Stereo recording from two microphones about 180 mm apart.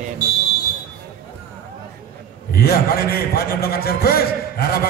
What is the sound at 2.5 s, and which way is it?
A man's voice, 55° left (ahead or behind).